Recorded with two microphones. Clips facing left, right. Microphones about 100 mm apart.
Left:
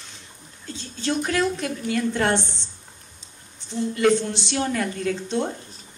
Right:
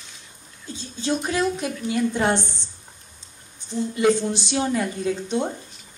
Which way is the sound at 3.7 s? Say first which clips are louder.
Even; 20° right (ahead or behind).